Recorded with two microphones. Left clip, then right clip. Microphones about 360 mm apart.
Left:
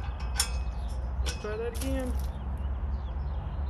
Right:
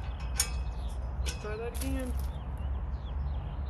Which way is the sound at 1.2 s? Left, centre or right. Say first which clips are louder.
Left 4 dB; centre.